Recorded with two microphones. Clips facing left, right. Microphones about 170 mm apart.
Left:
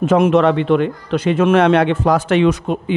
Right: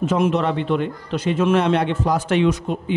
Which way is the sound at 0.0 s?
65° left (ahead or behind).